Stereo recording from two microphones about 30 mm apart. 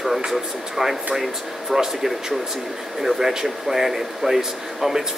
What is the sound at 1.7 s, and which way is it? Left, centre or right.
Speech, centre.